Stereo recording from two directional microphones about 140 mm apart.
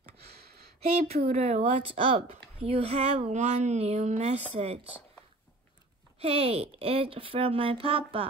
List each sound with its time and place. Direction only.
0.2 s a sound: 90° right
0.7 s a woman's voice: 45° right (ahead or behind)
6.1 s a woman's voice: 45° right (ahead or behind)